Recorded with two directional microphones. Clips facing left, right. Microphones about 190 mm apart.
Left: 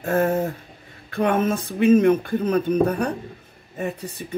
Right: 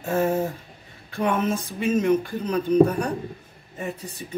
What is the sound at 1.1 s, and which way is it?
Speech, 60° left (ahead or behind).